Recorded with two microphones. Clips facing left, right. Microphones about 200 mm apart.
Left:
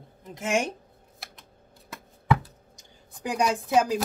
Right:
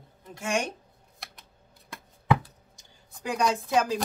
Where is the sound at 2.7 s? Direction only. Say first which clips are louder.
Left 3 dB; 15° left (ahead or behind).